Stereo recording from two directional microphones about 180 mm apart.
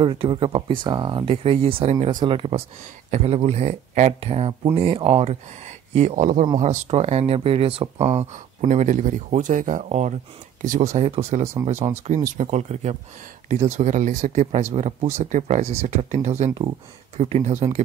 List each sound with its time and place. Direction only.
0.0 s speech: 30° right (ahead or behind)